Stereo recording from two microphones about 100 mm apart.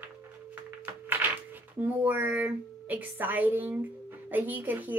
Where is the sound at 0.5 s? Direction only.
20° right (ahead or behind).